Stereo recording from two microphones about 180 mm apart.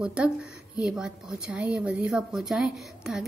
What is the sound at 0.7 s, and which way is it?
A woman's voice, 5° right (ahead or behind).